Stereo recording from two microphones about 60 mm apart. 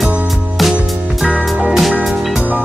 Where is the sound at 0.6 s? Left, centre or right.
Centre.